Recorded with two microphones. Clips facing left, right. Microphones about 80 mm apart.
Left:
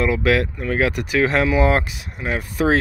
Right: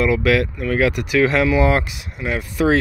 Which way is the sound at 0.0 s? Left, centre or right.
Left.